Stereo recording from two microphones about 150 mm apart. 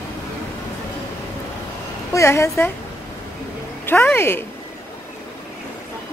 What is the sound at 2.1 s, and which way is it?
Speech, 20° left (ahead or behind).